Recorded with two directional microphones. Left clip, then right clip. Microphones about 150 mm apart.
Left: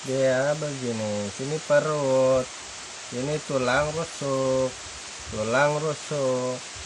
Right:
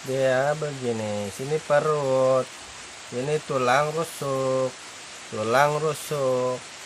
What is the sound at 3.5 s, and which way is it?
Speech, 15° right (ahead or behind).